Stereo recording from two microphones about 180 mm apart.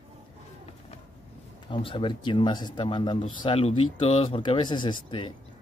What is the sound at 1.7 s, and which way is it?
Speech, 30° left (ahead or behind).